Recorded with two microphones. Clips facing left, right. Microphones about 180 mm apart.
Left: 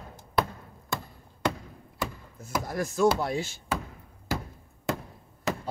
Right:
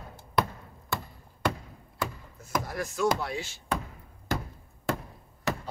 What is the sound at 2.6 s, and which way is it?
Chopping, 45° left (ahead or behind).